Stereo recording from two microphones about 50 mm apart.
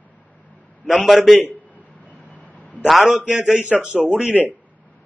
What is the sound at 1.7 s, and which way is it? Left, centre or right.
Vehicle, left.